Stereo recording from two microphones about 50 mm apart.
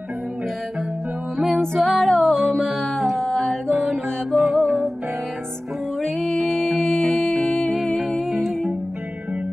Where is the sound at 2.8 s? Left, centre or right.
Centre.